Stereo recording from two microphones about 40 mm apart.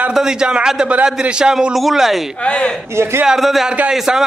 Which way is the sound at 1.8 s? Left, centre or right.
Centre.